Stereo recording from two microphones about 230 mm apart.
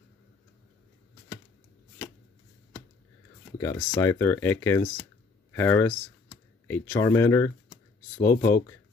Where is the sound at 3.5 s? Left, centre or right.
Centre.